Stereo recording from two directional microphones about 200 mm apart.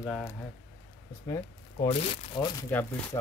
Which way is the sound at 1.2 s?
20° left (ahead or behind).